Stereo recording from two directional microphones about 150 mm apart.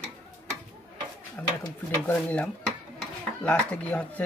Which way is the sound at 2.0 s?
10° left (ahead or behind).